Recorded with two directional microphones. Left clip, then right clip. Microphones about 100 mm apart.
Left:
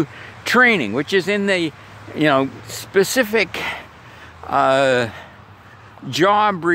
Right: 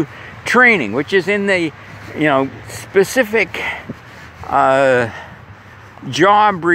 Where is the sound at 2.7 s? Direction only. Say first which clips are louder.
Right 4 dB; 50° left (ahead or behind).